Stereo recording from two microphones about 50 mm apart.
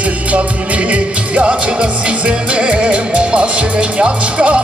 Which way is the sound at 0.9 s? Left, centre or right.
Right.